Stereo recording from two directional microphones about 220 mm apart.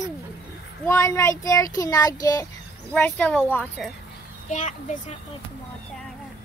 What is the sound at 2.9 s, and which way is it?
Speech, 5° left (ahead or behind).